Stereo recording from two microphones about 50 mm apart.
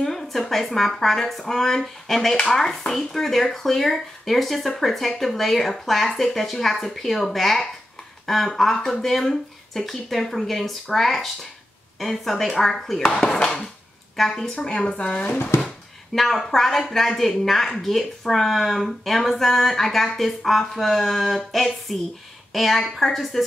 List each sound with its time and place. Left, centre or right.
0.0 s speech: centre
13.0 s speech: centre
14.1 s a woman's voice: centre; by 15.3 s left
16.2 s speech: centre